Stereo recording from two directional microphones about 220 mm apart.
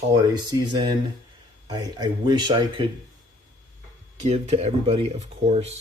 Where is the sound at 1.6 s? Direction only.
15° right (ahead or behind).